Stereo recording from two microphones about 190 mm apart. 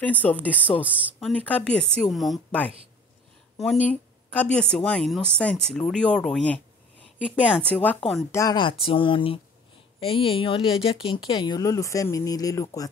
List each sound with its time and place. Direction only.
0.0 s speech: 10° left (ahead or behind)
8.3 s speech: 20° left (ahead or behind)